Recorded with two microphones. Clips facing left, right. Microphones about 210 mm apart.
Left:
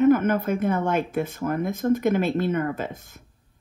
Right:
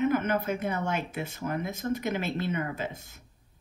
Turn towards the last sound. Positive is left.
turn(degrees=50)  # may be behind; listen again after turning